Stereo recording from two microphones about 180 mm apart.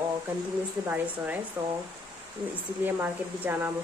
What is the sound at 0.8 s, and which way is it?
Speech, 10° right (ahead or behind).